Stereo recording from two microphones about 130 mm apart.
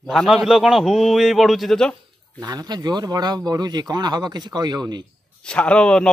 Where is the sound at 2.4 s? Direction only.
30° right (ahead or behind).